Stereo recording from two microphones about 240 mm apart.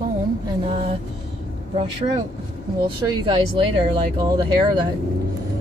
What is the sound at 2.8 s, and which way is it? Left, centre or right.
Speech, right.